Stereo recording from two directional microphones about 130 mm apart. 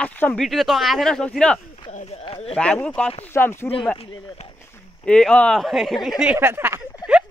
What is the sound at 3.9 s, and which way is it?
Speech, 45° left (ahead or behind).